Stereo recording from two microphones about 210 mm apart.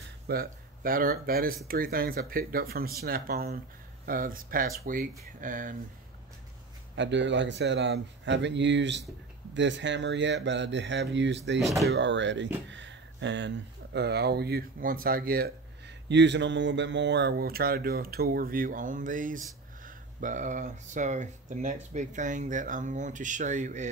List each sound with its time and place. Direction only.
0.3 s speech: 45° right (ahead or behind)
7.0 s speech: 60° right (ahead or behind)
11.6 s speech: centre (ahead or behind)
11.9 s speech: 60° right (ahead or behind)
12.6 s a sound: 60° right (ahead or behind)
13.9 s speech: 50° right (ahead or behind)
16.1 s speech: 55° right (ahead or behind); by 23.9 s 35° right (ahead or behind)